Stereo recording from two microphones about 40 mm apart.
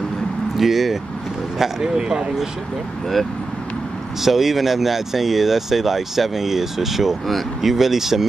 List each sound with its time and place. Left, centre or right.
0.6 s speech: centre
1.6 s speech: centre
4.2 s speech: centre